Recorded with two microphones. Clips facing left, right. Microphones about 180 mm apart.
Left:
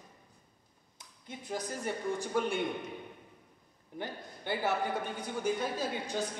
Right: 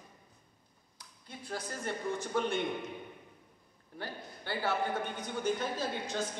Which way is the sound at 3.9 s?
20° left (ahead or behind).